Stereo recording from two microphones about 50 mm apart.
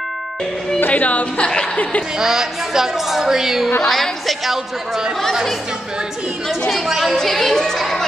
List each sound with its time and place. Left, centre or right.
0.7 s speech: left
1.0 s a woman's voice: left
2.1 s a woman's voice: centre
3.8 s a woman's voice: centre
7.2 s a woman's voice: centre